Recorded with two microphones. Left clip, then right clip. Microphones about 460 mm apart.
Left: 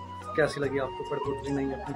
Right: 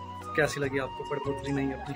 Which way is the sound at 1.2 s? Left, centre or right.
Centre.